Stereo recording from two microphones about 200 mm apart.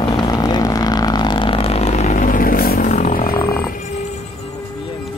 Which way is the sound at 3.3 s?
15° left (ahead or behind).